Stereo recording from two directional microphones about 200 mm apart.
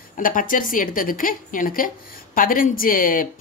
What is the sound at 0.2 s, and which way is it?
Speech, 45° left (ahead or behind).